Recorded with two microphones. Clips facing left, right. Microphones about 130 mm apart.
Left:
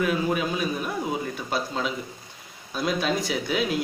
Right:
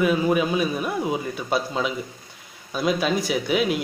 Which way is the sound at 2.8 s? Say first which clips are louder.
Right 3 dB; 15° right (ahead or behind).